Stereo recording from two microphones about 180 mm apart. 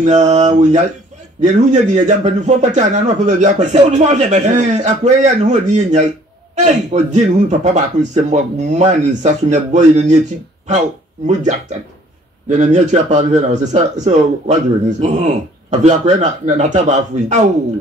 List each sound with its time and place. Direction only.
0.0 s speech: 40° right (ahead or behind)
12.4 s speech: 40° right (ahead or behind)